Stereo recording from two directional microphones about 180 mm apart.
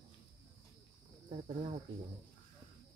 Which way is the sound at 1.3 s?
30° right (ahead or behind).